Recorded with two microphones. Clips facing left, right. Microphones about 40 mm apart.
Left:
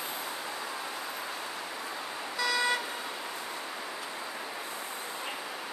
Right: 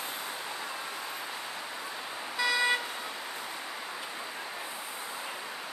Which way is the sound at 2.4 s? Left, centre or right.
Right.